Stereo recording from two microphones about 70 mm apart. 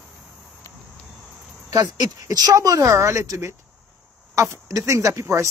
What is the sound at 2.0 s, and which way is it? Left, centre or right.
A man's voice, right.